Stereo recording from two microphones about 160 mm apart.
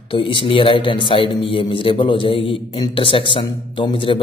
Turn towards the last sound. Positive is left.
turn(degrees=35)  # may be behind; listen again after turning